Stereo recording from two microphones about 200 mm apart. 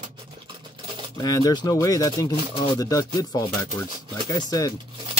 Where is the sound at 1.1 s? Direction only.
20° left (ahead or behind).